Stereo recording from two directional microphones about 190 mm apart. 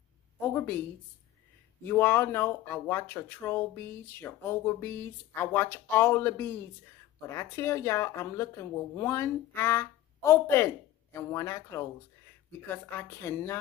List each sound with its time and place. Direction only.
0.6 s speech: 10° left (ahead or behind)
1.9 s speech: 10° left (ahead or behind)